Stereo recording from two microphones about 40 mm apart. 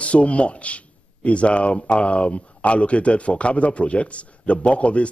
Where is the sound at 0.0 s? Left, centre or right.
Left.